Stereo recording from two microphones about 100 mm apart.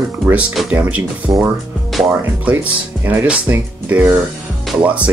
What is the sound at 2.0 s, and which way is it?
Speech, 35° right (ahead or behind).